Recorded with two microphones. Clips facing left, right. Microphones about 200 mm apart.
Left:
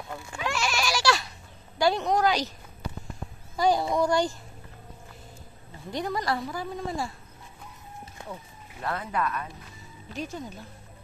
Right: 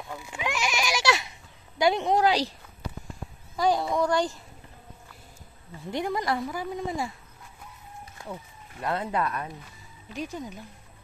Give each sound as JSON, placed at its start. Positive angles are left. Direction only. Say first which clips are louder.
{"t": 0.1, "sound": "goat", "louder": "even", "side_deg": -15}
{"t": 1.8, "sound": "a sound", "louder": "right 1 dB", "side_deg": -20}
{"t": 3.5, "sound": "speech", "louder": "left 1 dB", "side_deg": 0}
{"t": 5.9, "sound": "a woman's voice", "louder": "right 1 dB", "side_deg": -20}
{"t": 8.8, "sound": "a woman's voice", "louder": "right 2 dB", "side_deg": -25}
{"t": 10.1, "sound": "speech", "louder": "right 1 dB", "side_deg": -15}